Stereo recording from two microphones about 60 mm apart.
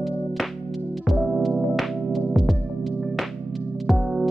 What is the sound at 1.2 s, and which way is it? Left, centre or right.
Music, centre.